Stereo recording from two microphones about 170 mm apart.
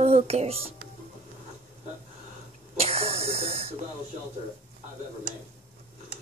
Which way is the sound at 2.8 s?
35° right (ahead or behind).